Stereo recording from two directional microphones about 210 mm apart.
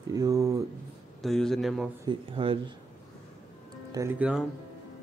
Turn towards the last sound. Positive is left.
turn(degrees=-15)  # may be behind; listen again after turning